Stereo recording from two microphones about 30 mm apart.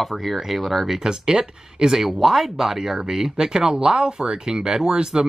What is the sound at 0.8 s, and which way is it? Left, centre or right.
Speech, centre.